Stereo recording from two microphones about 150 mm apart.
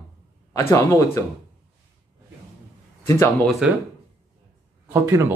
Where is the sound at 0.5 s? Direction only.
15° left (ahead or behind).